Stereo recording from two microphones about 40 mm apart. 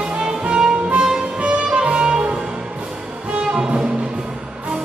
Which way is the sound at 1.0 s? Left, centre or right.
Centre.